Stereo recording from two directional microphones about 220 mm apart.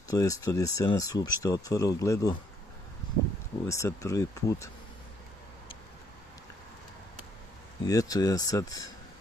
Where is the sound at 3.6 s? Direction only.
15° left (ahead or behind).